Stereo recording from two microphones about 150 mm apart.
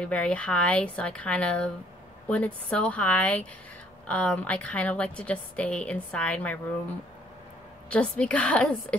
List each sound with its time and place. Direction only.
0.0 s a woman's voice: 5° left (ahead or behind)
7.9 s a woman's voice: 10° left (ahead or behind)